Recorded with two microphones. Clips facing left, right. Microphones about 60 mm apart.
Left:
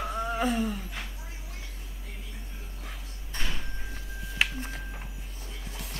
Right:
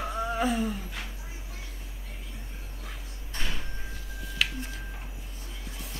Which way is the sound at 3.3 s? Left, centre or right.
Centre.